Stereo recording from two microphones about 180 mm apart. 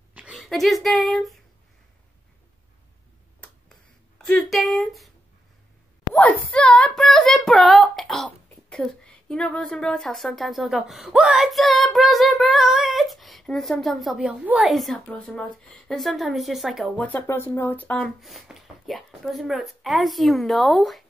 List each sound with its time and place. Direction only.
0.1 s speech: 5° right (ahead or behind)
4.2 s speech: centre (ahead or behind)
6.1 s speech: 5° left (ahead or behind)